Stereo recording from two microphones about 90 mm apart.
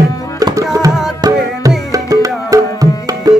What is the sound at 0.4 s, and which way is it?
Tabla, 40° right (ahead or behind).